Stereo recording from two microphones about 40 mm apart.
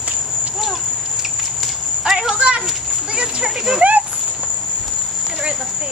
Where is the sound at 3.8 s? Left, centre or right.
Right.